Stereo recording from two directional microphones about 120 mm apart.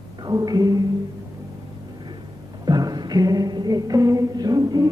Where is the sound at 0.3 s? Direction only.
30° right (ahead or behind).